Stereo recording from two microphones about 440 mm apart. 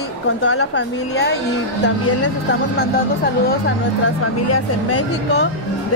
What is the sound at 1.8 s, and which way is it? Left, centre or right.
Speech, left.